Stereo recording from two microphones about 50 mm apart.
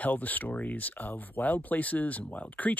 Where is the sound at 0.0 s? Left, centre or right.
Left.